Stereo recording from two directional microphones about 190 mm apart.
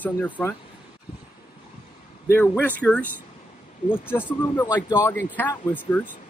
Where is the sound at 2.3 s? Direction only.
10° left (ahead or behind).